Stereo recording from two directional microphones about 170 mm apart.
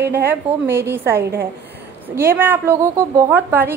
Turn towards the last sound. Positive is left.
turn(degrees=-10)  # may be behind; listen again after turning